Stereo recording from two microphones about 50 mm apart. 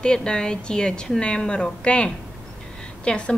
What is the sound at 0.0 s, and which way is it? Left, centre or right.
A woman's voice, centre.